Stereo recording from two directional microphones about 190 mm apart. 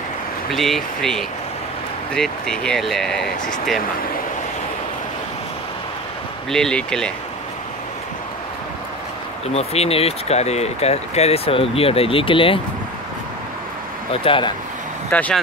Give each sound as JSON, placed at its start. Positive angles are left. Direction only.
{"t": 0.5, "sound": "speech", "side_deg": 0}
{"t": 6.5, "sound": "speech", "side_deg": 5}
{"t": 9.5, "sound": "speech", "side_deg": 35}
{"t": 14.1, "sound": "speech", "side_deg": 30}
{"t": 15.0, "sound": "speech", "side_deg": 10}